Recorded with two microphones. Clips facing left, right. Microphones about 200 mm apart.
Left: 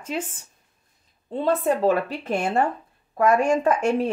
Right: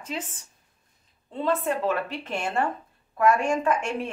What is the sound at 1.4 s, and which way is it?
A woman's voice, 35° left (ahead or behind).